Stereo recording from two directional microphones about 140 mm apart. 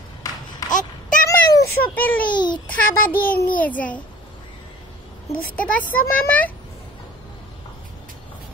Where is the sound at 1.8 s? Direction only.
10° left (ahead or behind).